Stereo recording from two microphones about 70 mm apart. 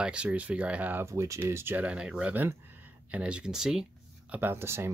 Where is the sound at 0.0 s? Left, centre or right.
Centre.